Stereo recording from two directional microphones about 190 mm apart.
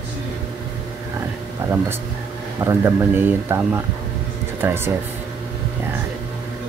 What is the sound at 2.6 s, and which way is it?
Speech, 15° right (ahead or behind).